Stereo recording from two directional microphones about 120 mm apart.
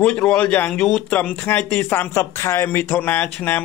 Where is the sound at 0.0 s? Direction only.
5° left (ahead or behind).